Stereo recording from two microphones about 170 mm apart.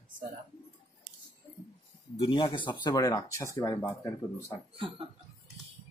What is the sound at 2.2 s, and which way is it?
Speech, 30° left (ahead or behind).